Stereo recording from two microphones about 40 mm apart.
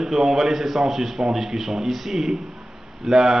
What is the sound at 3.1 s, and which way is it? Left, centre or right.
Speech, centre.